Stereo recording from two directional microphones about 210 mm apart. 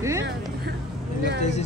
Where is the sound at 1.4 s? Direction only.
35° left (ahead or behind).